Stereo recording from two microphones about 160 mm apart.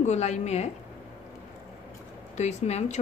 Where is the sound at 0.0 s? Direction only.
45° left (ahead or behind).